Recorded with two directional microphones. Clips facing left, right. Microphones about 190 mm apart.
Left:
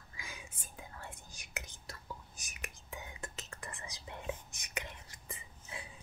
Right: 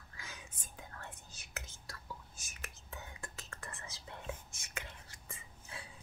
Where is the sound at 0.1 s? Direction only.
10° left (ahead or behind).